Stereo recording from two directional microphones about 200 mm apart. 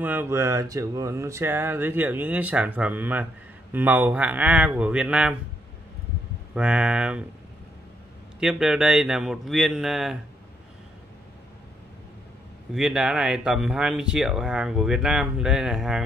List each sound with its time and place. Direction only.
0.0 s speech: 10° right (ahead or behind)
6.5 s speech: 5° right (ahead or behind)
8.4 s speech: 5° right (ahead or behind)
12.7 s speech: 5° right (ahead or behind)